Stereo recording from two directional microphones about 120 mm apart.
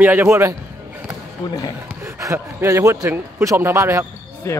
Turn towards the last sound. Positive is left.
turn(degrees=25)  # may be behind; listen again after turning